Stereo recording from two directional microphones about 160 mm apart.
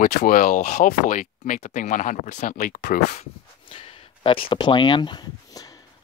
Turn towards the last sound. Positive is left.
turn(degrees=25)  # may be behind; listen again after turning